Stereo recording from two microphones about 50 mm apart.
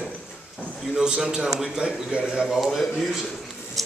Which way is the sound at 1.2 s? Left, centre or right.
Centre.